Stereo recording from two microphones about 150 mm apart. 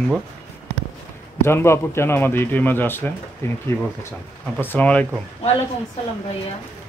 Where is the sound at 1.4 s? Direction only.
15° left (ahead or behind).